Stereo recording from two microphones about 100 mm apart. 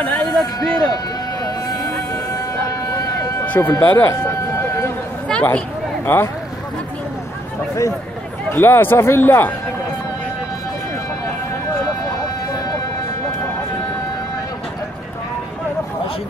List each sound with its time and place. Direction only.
0.0 s speech: 15° left (ahead or behind)
0.3 s speech: 40° left (ahead or behind)
3.4 s a sound: 20° left (ahead or behind)
5.3 s speech: 15° left (ahead or behind)
8.5 s speech: 25° left (ahead or behind)